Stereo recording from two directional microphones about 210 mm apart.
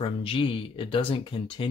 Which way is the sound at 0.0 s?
25° left (ahead or behind).